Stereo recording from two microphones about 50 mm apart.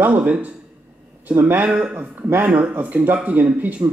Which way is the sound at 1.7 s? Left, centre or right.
Right.